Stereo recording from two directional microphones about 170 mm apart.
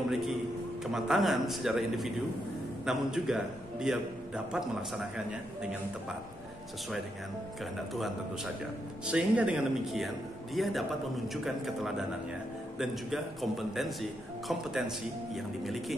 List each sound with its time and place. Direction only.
0.9 s a man's voice: centre (ahead or behind)
9.0 s a man's voice: 10° right (ahead or behind)